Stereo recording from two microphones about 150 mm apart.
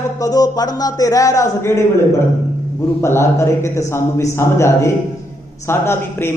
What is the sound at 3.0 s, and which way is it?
A man's voice, 20° left (ahead or behind).